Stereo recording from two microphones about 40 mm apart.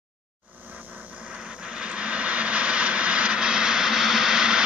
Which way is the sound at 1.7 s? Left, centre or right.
Right.